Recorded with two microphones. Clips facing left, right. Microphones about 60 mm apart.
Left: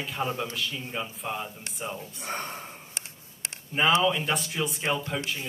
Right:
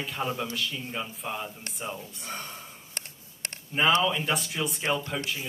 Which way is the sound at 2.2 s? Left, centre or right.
Left.